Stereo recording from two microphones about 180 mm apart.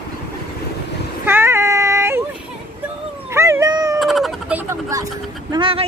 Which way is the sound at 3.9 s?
Centre (ahead or behind).